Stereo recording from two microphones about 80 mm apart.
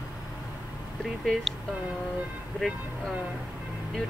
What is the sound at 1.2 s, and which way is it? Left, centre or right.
Speech, centre.